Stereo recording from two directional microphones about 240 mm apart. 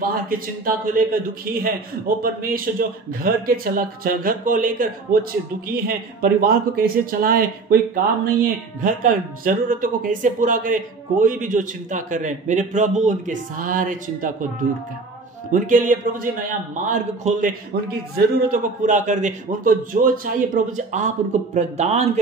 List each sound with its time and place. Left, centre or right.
0.0 s speech: right